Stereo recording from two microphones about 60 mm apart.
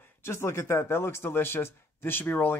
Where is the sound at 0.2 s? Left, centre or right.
Left.